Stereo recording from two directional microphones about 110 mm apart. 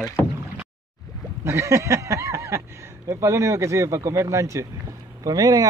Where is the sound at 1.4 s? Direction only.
25° right (ahead or behind).